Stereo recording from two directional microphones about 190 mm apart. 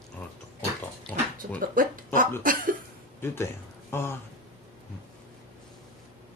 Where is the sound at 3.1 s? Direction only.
10° left (ahead or behind).